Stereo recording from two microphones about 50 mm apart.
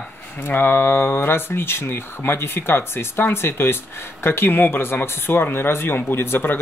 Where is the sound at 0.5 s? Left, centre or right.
Left.